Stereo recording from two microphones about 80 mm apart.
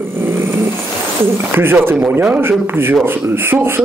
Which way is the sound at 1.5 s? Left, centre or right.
Right.